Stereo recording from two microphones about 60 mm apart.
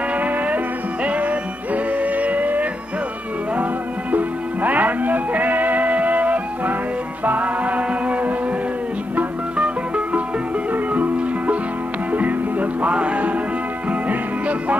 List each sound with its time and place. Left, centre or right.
0.1 s music: right
4.1 s music: right